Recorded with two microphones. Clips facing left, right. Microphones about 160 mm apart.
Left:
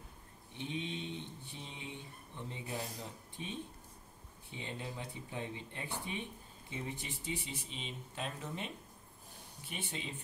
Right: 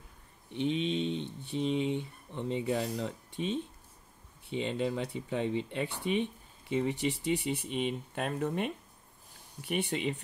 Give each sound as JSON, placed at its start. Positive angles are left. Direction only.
{"t": 0.6, "sound": "speech", "side_deg": -80}